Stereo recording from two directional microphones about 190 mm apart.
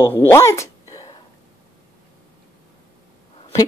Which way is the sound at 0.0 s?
10° left (ahead or behind).